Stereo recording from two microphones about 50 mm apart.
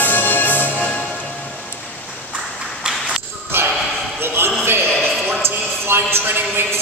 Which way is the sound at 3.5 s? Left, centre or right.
Right.